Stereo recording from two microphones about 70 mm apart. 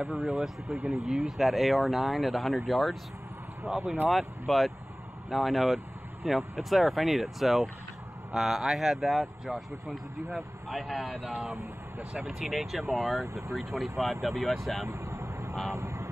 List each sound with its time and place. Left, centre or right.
0.0 s speech: centre
14.9 s vehicle: right